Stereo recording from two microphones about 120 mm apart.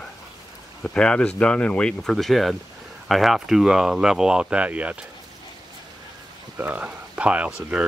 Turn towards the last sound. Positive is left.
turn(degrees=-10)  # may be behind; listen again after turning